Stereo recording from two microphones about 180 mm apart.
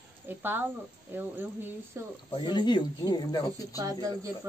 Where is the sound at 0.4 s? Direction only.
10° right (ahead or behind).